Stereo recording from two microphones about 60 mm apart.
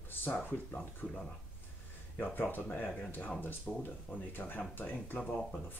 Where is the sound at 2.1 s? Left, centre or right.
Left.